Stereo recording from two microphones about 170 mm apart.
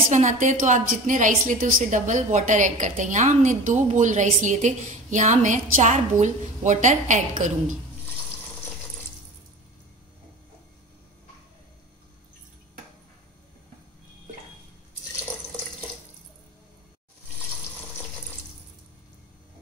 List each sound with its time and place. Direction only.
0.1 s a woman's voice: 45° right (ahead or behind)